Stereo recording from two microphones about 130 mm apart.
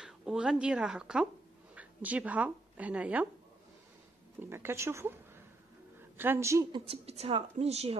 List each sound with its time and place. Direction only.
0.0 s speech: 5° right (ahead or behind)
4.4 s speech: 20° right (ahead or behind)
6.1 s speech: 20° right (ahead or behind)
6.7 s speech: 50° right (ahead or behind)